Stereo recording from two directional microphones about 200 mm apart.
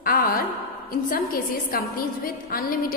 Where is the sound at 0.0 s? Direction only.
45° left (ahead or behind).